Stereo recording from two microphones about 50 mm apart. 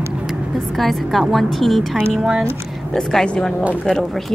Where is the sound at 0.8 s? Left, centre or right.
Centre.